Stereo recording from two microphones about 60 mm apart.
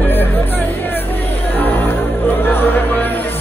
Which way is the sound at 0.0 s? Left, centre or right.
Left.